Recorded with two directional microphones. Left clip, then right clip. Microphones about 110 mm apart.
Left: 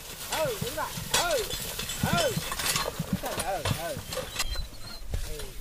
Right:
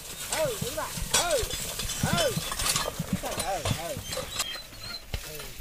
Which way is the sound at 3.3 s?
5° left (ahead or behind).